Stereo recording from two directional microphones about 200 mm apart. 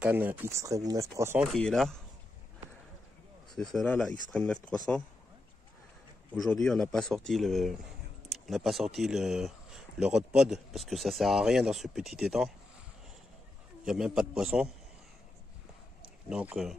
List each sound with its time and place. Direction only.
0.0 s speech: 10° right (ahead or behind)
1.5 s speech: centre (ahead or behind)
3.5 s speech: 5° left (ahead or behind)
6.3 s speech: centre (ahead or behind)
13.8 s speech: 5° right (ahead or behind)
16.3 s speech: 5° right (ahead or behind)